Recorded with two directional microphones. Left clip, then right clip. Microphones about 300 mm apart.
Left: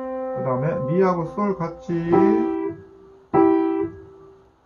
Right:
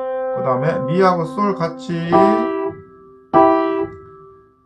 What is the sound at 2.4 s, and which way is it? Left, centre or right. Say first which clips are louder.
Music: right 3 dB; right.